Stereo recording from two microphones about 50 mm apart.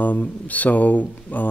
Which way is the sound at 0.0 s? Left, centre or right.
Left.